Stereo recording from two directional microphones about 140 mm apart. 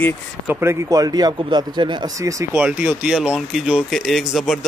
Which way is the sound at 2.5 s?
10° right (ahead or behind).